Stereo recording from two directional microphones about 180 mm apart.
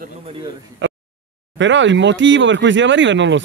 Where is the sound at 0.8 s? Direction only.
90° right.